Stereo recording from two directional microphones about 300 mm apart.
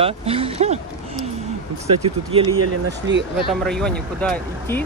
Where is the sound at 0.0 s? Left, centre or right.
Centre.